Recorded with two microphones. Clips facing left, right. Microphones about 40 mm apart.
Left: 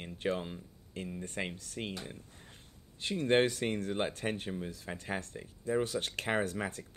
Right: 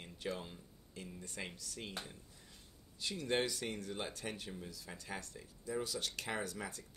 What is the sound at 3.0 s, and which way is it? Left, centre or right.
Speech, left.